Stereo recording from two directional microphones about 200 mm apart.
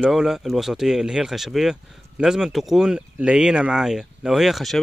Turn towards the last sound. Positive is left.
turn(degrees=0)  # may be behind; listen again after turning